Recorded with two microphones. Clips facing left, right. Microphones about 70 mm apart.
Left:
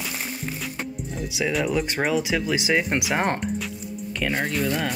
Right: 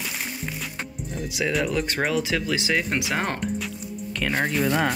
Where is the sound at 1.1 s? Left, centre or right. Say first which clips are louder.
Even; centre.